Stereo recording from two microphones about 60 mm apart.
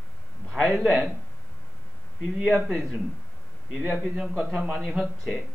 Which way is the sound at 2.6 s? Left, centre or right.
Centre.